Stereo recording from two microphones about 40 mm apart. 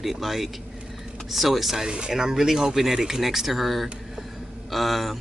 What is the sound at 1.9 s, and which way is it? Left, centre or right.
A man's voice, right.